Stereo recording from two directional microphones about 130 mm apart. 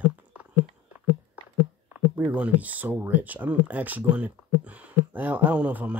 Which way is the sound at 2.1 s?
10° right (ahead or behind).